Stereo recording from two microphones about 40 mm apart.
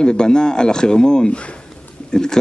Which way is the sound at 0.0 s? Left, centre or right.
Left.